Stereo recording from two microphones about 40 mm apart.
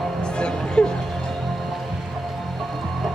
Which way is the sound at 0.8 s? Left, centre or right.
Left.